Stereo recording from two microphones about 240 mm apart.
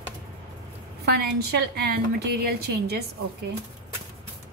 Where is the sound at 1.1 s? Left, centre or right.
Right.